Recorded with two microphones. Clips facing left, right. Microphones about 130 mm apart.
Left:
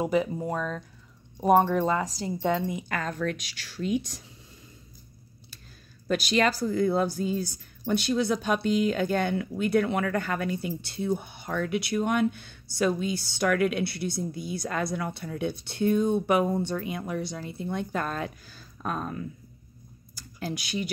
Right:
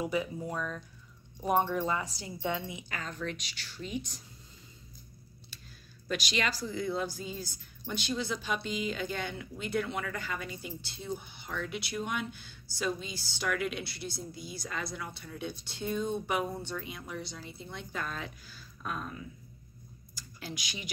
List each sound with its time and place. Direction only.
0.0 s speech: 45° left (ahead or behind); by 4.2 s 60° left (ahead or behind)
6.0 s speech: 45° left (ahead or behind)
7.8 s speech: 60° left (ahead or behind); by 16.7 s 80° left
16.7 s speech: 55° left (ahead or behind)